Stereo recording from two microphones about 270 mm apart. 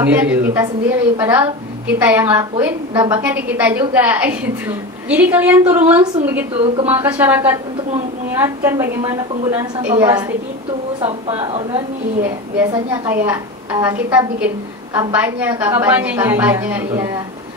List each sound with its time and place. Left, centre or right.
0.0 s a woman's voice: centre
11.0 s a woman's voice: right